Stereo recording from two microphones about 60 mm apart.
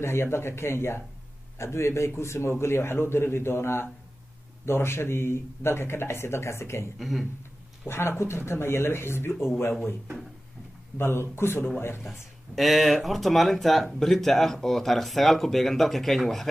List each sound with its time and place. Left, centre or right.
0.0 s a man's voice: left
7.0 s speech: centre
7.9 s a man's voice: left
11.0 s a man's voice: left
12.1 s speech: centre